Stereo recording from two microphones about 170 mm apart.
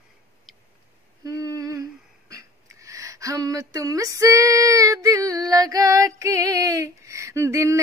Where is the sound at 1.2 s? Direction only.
20° right (ahead or behind).